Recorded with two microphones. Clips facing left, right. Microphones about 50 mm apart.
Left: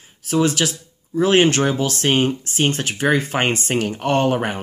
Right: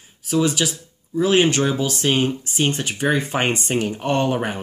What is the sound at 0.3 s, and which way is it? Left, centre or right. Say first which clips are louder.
Speech: left 1 dB; left.